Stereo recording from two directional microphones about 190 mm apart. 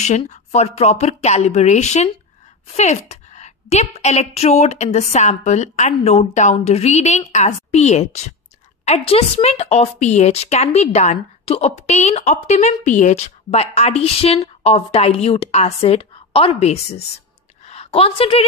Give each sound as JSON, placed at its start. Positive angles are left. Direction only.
{"t": 0.0, "sound": "a woman's voice", "side_deg": 35}